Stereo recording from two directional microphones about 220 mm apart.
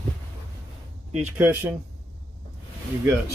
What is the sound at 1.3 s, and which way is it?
Speech, 10° right (ahead or behind).